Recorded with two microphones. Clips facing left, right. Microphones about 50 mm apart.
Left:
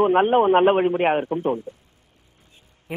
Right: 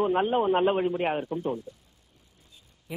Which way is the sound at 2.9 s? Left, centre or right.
Left.